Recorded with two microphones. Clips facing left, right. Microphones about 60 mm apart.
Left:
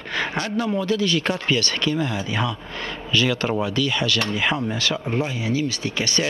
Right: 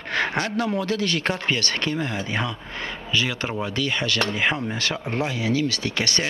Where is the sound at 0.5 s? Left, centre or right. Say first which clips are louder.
Left 6 dB; right.